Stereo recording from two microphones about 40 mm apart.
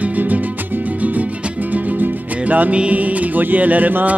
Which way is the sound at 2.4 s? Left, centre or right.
Right.